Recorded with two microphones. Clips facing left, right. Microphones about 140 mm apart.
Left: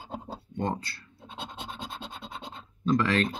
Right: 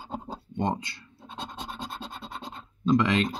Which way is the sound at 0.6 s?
20° right (ahead or behind).